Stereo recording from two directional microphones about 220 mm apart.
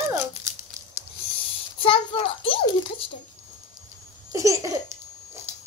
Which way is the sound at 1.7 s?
25° left (ahead or behind).